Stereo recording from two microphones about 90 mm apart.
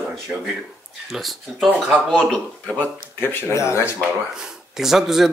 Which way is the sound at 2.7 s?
20° left (ahead or behind).